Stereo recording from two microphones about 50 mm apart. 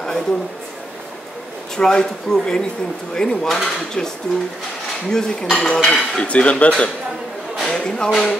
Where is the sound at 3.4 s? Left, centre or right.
Centre.